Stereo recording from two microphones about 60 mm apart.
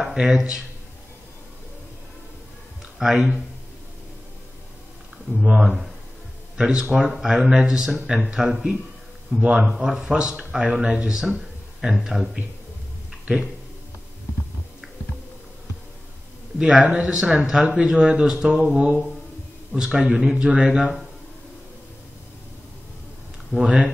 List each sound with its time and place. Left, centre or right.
0.0 s speech: centre
3.0 s speech: centre
5.5 s speech: centre
6.6 s speech: centre
11.8 s speech: centre
16.5 s speech: centre
23.5 s speech: centre